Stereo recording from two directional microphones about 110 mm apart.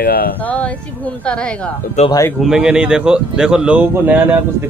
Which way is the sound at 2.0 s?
85° left.